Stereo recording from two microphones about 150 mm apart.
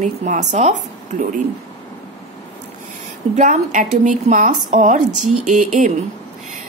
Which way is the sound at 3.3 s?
55° right (ahead or behind).